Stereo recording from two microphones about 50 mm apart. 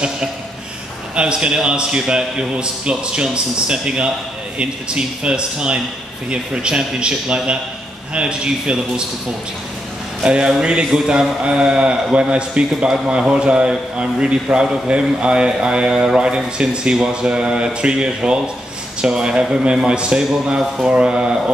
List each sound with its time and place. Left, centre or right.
1.1 s a man's voice: right
10.2 s a man's voice: right